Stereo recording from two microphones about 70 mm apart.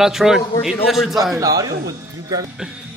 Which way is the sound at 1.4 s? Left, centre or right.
Right.